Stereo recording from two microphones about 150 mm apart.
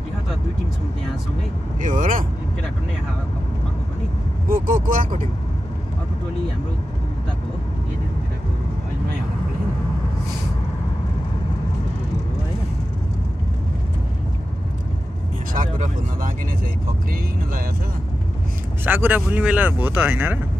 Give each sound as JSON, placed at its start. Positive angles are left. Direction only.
{"t": 1.8, "sound": "speech", "side_deg": -60}
{"t": 4.5, "sound": "speech", "side_deg": -65}
{"t": 15.5, "sound": "speech", "side_deg": -60}
{"t": 18.9, "sound": "speech", "side_deg": -15}